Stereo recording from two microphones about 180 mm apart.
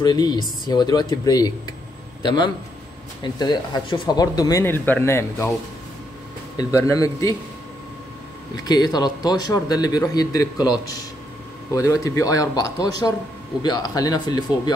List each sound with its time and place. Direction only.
0.0 s speech: 20° left (ahead or behind)
6.5 s speech: 20° left (ahead or behind)
8.6 s speech: 20° left (ahead or behind)